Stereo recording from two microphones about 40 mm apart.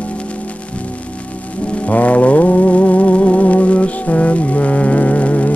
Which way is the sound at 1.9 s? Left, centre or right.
Left.